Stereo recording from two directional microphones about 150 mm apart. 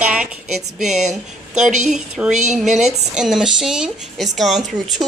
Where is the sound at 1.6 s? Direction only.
50° right (ahead or behind).